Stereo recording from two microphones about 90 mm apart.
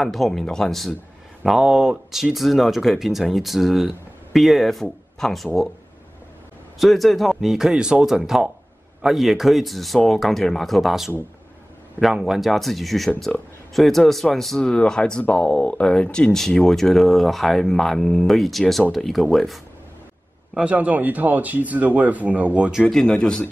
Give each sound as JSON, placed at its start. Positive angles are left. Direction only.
{"t": 0.0, "sound": "speech", "side_deg": 5}
{"t": 6.8, "sound": "speech", "side_deg": 0}
{"t": 20.5, "sound": "speech", "side_deg": -15}
{"t": 22.9, "sound": "a man's voice", "side_deg": 10}